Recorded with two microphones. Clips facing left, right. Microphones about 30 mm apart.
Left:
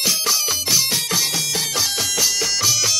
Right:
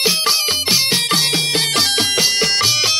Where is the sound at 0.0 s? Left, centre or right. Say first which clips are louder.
Right 4 dB; right.